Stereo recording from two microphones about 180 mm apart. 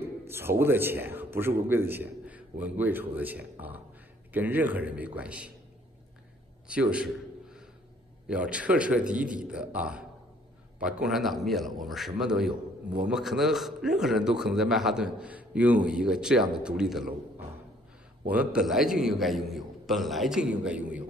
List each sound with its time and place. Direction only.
0.3 s a man's voice: 15° right (ahead or behind)
6.7 s a sound: 5° right (ahead or behind)
8.3 s a man's voice: 5° right (ahead or behind)
18.3 s a man's voice: 5° right (ahead or behind)